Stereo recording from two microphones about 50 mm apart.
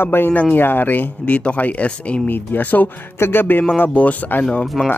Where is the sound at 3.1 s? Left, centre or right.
Left.